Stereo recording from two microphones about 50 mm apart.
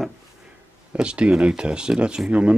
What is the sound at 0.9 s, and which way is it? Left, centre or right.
Speech, right.